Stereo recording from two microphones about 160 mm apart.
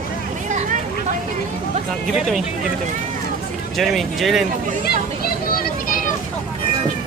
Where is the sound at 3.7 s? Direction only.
Centre (ahead or behind).